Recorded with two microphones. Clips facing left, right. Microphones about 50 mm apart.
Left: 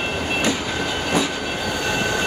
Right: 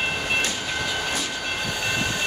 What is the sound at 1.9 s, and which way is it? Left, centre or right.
Train, left.